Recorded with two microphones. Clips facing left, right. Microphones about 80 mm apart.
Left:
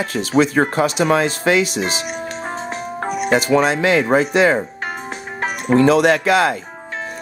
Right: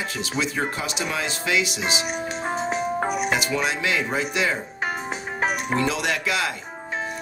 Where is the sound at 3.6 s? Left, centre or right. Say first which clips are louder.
Left 8 dB; left.